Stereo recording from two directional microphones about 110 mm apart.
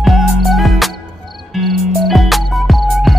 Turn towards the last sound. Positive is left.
turn(degrees=0)  # may be behind; listen again after turning